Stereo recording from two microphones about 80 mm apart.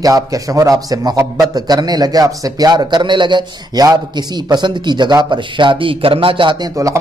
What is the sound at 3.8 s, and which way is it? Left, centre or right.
Speech, right.